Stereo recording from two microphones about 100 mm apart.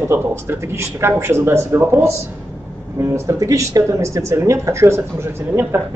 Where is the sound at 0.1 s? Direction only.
25° right (ahead or behind).